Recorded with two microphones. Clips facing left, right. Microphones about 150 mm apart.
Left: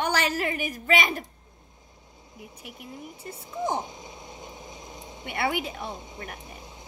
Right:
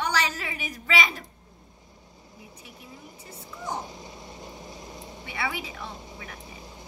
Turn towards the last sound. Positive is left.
turn(degrees=55)  # may be behind; listen again after turning